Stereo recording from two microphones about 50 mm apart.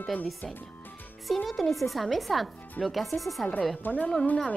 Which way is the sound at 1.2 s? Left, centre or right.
Centre.